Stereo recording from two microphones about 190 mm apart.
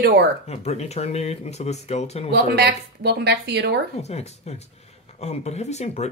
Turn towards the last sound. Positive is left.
turn(degrees=35)  # may be behind; listen again after turning